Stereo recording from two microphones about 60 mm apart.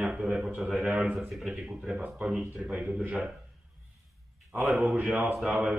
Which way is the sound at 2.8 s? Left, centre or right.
Right.